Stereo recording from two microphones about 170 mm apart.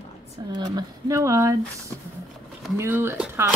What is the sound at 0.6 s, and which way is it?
Speech, 20° right (ahead or behind).